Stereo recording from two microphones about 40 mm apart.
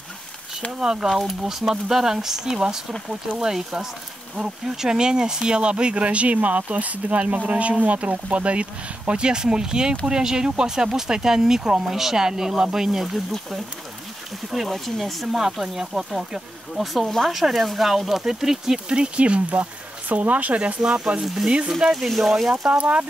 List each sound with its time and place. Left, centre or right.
0.7 s speech: centre
4.4 s speech: centre
15.0 s speech: centre
18.9 s speech: right
19.6 s speech: right
20.8 s speech: right; by 22.5 s centre
22.7 s speech: right